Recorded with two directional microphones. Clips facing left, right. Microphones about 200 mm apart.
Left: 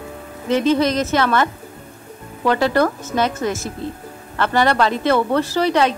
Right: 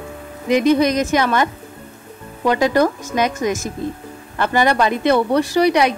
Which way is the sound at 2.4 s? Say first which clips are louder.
Right 1 dB; 15° right (ahead or behind).